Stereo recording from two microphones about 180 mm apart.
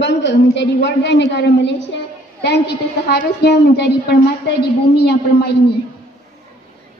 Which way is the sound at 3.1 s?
65° left (ahead or behind).